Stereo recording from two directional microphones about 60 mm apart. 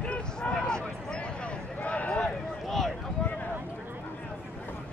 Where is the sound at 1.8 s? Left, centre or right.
Left.